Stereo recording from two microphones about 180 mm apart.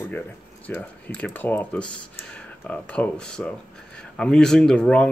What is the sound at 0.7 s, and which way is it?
Speech, 10° left (ahead or behind).